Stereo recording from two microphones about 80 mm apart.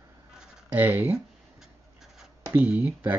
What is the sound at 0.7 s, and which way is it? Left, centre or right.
Speech, right.